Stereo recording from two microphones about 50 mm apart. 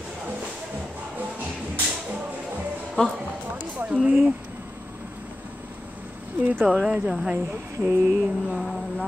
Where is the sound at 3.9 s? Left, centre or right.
Right.